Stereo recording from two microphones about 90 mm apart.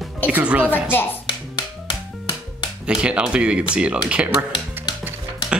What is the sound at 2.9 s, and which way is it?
Speech, 10° right (ahead or behind).